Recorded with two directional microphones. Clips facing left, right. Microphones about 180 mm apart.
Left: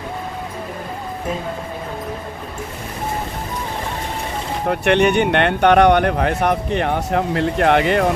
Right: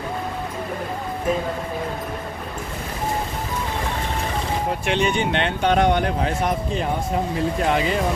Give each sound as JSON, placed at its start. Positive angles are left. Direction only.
{"t": 4.6, "sound": "speech", "side_deg": 65}